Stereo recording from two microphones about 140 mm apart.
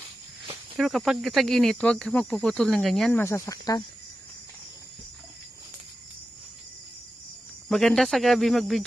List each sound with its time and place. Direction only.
0.7 s speech: centre (ahead or behind)
3.2 s speech: 20° left (ahead or behind)
7.6 s speech: centre (ahead or behind)